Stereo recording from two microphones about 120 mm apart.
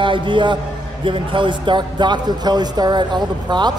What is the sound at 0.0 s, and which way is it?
A man's voice, 45° right (ahead or behind).